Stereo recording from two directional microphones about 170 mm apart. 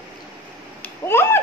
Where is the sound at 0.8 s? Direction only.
15° left (ahead or behind).